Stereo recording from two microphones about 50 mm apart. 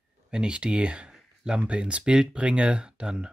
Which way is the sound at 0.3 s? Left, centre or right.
Centre.